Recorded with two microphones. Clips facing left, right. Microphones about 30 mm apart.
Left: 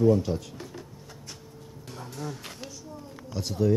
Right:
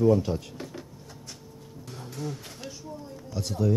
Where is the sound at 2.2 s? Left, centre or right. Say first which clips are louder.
Right 2 dB; left.